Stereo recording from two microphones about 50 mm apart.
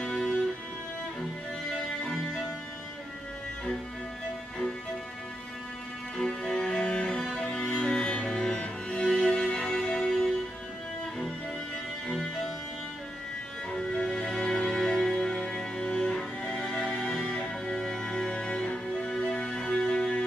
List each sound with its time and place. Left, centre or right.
0.0 s music: centre
2.0 s music: centre
6.1 s music: centre
12.1 s music: centre
13.7 s music: centre
15.1 s music: centre